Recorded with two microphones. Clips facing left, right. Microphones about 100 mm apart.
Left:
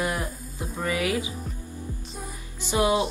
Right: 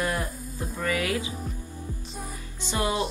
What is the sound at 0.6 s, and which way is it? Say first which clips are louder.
Speech: even; 25° left (ahead or behind).